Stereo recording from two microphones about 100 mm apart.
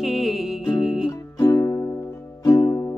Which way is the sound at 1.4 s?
30° left (ahead or behind).